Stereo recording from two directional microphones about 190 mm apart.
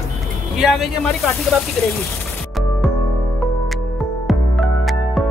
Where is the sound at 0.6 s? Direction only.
Centre (ahead or behind).